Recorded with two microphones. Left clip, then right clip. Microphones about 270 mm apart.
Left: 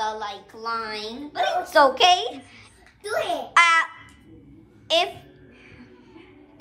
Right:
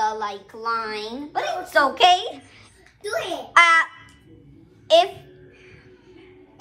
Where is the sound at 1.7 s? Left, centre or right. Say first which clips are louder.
Even; centre.